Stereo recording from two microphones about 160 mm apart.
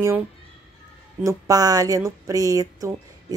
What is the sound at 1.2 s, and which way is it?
Speech, 20° right (ahead or behind).